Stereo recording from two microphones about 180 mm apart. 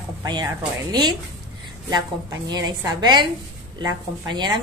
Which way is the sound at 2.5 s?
25° right (ahead or behind).